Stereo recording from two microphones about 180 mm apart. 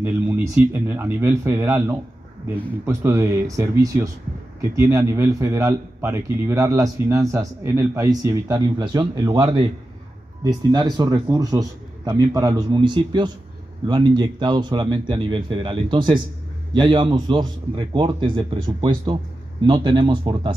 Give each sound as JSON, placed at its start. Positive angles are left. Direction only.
{"t": 0.0, "sound": "a man's voice", "side_deg": -10}